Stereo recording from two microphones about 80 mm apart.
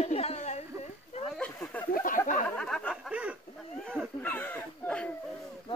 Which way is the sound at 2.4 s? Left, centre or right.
Centre.